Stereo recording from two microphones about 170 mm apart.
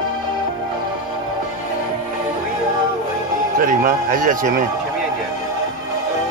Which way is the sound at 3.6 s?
55° right (ahead or behind).